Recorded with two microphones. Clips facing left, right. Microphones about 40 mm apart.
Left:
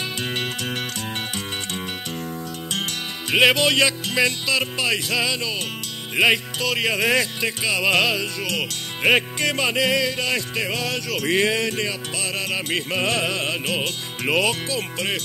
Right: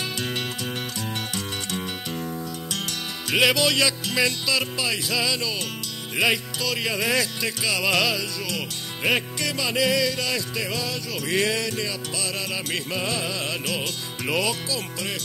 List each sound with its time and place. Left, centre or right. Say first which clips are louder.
0.2 s music: left 2 dB; left
3.3 s music: left 3 dB; left
4.7 s music: left 3 dB; left
5.2 s music: left 2 dB; left
9.0 s music: left 5 dB; left
11.2 s music: left 3 dB; left
13.0 s music: left 5 dB; left
13.5 s music: left 3 dB; left